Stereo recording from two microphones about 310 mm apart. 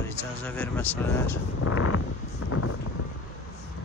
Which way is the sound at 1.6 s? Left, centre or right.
Left.